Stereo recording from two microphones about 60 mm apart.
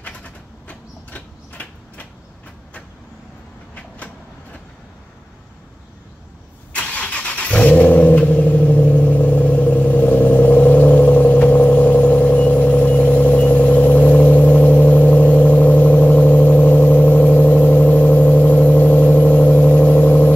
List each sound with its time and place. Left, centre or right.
0.0 s a sound: left
3.7 s vehicle: left
6.7 s vehicle: left